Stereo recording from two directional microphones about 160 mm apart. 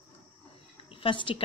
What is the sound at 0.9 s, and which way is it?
Speech, 30° left (ahead or behind).